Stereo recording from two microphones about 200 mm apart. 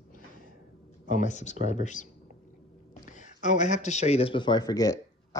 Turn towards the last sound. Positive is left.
turn(degrees=20)  # may be behind; listen again after turning